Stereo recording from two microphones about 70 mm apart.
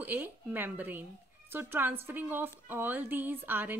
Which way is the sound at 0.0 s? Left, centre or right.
Right.